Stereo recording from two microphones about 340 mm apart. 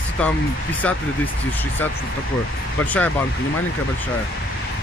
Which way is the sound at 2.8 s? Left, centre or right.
Centre.